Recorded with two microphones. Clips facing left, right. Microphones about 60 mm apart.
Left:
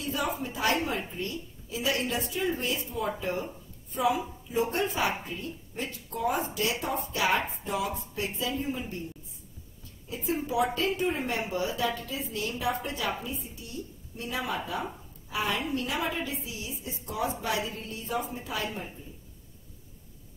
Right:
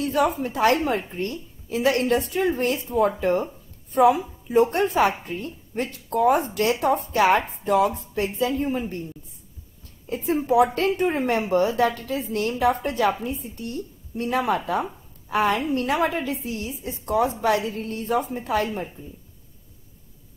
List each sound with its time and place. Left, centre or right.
0.0 s a woman's voice: right
10.0 s a woman's voice: right